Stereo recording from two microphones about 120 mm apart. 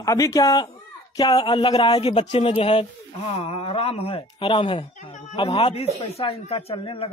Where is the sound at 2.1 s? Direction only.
65° left (ahead or behind).